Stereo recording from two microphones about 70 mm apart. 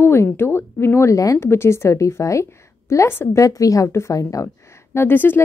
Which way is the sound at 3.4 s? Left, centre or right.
Left.